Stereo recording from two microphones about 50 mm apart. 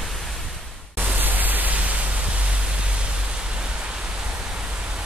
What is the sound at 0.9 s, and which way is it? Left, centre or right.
Pink noise, right.